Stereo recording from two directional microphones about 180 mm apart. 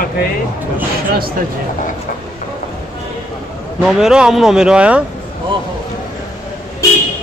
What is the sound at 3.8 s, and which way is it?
Speech, 5° right (ahead or behind).